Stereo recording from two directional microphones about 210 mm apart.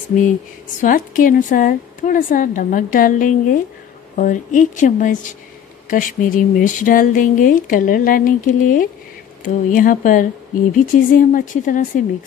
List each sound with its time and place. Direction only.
0.1 s speech: 40° left (ahead or behind)